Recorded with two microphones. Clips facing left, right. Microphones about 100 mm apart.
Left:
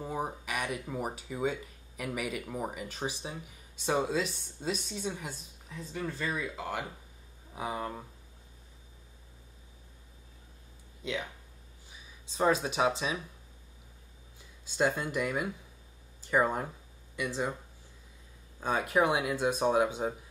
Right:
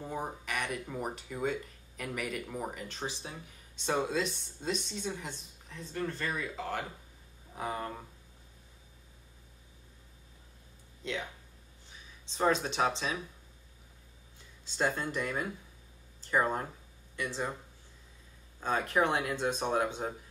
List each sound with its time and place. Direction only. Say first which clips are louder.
0.0 s speech: left 2 dB; 10° left (ahead or behind)
11.0 s speech: left 2 dB; 5° left (ahead or behind)
12.3 s speech: left 1 dB; 10° left (ahead or behind)
14.8 s speech: left 3 dB; 15° left (ahead or behind)
18.6 s speech: left 2 dB; 15° left (ahead or behind)